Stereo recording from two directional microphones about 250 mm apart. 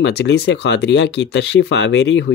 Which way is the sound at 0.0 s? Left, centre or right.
Left.